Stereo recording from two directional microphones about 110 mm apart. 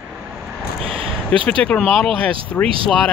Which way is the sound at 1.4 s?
10° left (ahead or behind).